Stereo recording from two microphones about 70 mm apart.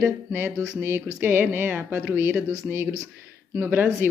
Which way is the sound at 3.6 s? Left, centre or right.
Right.